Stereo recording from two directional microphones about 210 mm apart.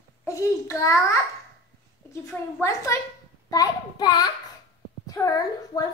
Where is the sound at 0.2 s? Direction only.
15° left (ahead or behind).